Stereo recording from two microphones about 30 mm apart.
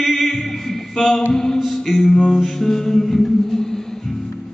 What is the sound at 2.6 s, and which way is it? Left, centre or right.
Music, centre.